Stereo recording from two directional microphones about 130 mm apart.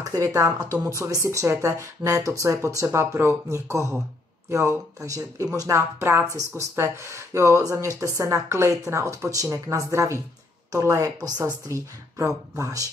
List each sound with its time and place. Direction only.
0.0 s speech: 25° right (ahead or behind)